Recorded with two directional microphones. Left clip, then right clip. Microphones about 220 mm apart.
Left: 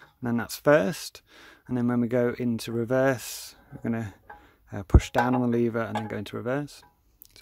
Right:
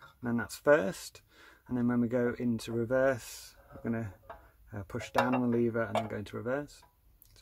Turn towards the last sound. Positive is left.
turn(degrees=35)  # may be behind; listen again after turning